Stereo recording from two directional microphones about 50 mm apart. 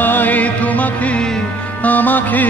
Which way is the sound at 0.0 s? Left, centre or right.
Left.